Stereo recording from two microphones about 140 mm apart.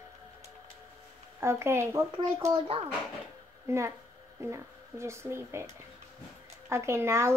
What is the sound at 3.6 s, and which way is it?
A woman's voice, 20° right (ahead or behind).